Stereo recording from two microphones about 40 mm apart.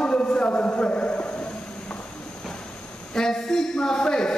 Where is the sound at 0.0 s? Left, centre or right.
Left.